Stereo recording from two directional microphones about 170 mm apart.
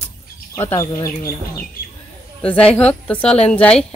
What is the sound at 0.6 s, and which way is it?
Speech, 15° left (ahead or behind).